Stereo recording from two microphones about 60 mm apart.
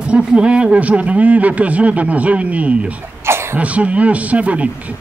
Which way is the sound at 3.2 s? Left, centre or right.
Right.